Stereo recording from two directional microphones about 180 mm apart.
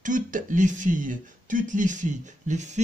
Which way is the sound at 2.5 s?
40° right (ahead or behind).